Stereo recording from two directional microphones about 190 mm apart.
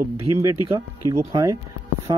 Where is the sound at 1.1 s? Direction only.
20° right (ahead or behind).